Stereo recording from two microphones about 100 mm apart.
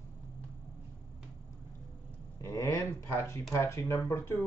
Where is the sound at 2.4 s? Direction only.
30° left (ahead or behind).